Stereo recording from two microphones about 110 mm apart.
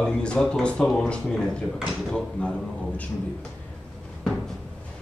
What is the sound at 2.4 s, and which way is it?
Speech, 10° left (ahead or behind).